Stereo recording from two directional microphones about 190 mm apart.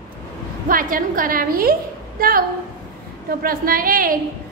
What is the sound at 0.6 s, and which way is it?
A woman's voice, 45° right (ahead or behind).